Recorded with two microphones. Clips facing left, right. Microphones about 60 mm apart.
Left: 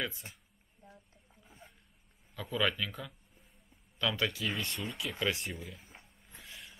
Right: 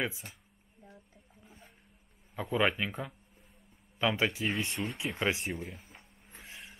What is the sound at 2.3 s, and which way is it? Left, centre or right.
Speech, right.